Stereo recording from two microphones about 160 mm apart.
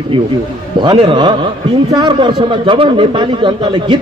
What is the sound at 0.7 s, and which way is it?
A man's voice, 35° right (ahead or behind).